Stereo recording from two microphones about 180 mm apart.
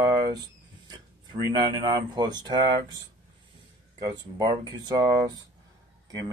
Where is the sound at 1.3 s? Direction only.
25° right (ahead or behind).